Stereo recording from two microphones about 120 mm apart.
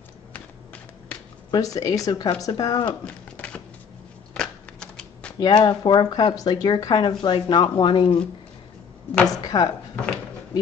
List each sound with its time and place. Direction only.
1.5 s speech: 30° left (ahead or behind)
3.3 s typewriter: 10° left (ahead or behind)
4.3 s shuffling cards: 5° left (ahead or behind)
5.4 s speech: 40° left (ahead or behind)
9.3 s a sound: 35° left (ahead or behind)